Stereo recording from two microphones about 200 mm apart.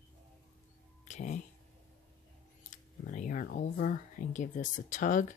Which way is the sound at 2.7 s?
40° left (ahead or behind).